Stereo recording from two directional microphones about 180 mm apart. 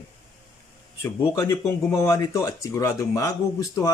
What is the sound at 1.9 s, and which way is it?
Speech, 20° left (ahead or behind).